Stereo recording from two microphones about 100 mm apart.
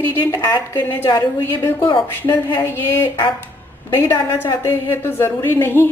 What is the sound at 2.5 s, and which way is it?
A woman's voice, 25° left (ahead or behind).